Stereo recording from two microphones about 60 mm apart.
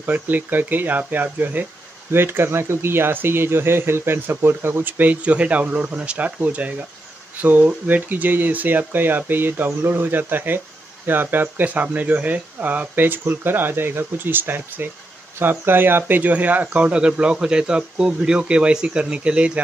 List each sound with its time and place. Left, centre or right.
0.0 s speech: right
4.8 s speech: right